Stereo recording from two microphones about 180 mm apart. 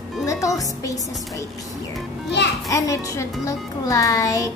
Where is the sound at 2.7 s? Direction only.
20° left (ahead or behind).